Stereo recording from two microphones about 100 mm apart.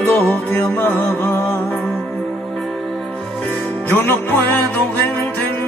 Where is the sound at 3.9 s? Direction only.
20° left (ahead or behind).